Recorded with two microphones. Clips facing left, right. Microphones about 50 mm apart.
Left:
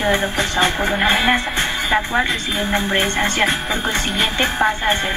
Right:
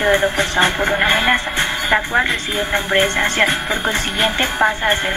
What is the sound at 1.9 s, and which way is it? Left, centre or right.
Speech, centre.